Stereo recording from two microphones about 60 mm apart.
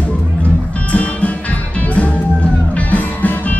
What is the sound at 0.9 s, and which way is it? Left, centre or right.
Music, left.